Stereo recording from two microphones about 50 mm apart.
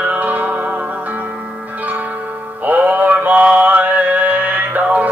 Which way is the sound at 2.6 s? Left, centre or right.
Right.